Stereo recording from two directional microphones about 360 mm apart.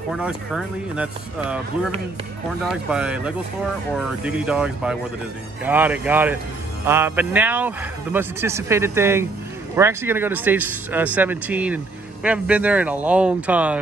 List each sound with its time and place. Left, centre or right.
0.1 s speech: centre